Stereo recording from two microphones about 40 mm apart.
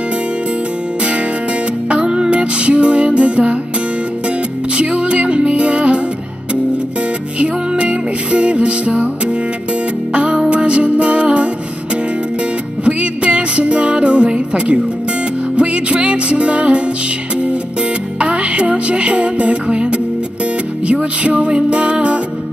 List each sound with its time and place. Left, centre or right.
1.9 s music: right
4.7 s music: right
7.3 s music: right
10.1 s music: right
12.8 s music: right
18.2 s music: right